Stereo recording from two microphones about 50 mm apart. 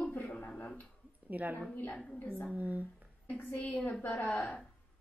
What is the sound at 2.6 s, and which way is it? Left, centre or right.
Speech, right.